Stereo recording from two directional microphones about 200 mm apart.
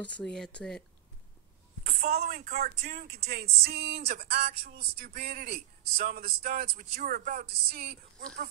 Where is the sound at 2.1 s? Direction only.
35° right (ahead or behind).